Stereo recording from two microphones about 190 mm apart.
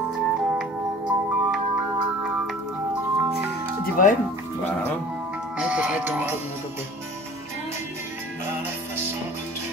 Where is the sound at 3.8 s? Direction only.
45° left (ahead or behind).